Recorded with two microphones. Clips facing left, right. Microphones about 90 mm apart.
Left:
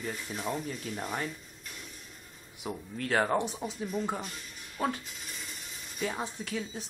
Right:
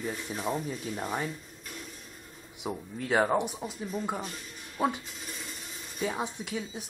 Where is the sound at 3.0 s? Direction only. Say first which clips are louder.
Right 2 dB; 10° right (ahead or behind).